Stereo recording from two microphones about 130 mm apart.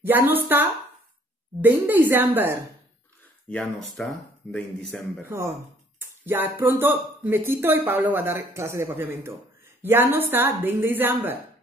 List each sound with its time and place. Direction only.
0.0 s speech: 15° right (ahead or behind)
3.4 s speech: 5° left (ahead or behind)
5.9 s speech: 15° right (ahead or behind)